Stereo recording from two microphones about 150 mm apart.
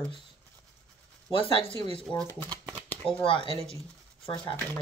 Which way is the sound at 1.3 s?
35° left (ahead or behind).